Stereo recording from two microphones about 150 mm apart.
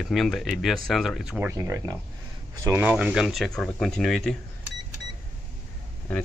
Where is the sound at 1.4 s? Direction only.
20° right (ahead or behind); by 4.3 s 5° left (ahead or behind).